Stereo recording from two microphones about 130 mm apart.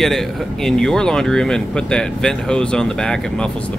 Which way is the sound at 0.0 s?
Centre (ahead or behind).